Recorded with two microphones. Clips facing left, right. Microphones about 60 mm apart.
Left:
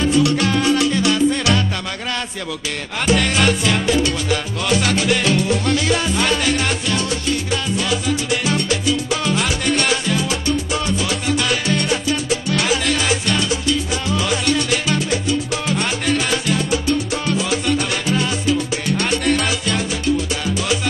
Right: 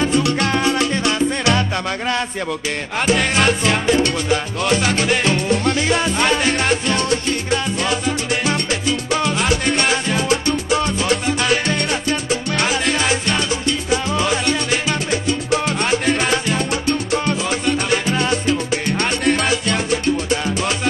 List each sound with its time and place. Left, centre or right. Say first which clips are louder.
0.6 s music: left 1 dB; centre
3.1 s music: even; centre
5.7 s salsa music: right 1 dB; centre
9.1 s music: right 2 dB; centre
11.2 s salsa music: right 1 dB; centre
14.5 s music: left 1 dB; centre
15.0 s music: right 1 dB; centre
17.1 s salsa music: right 1 dB; centre
18.5 s salsa music: even; right
19.0 s salsa music: right 1 dB; centre